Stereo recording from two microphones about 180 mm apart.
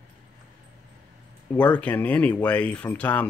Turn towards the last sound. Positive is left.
turn(degrees=10)  # may be behind; listen again after turning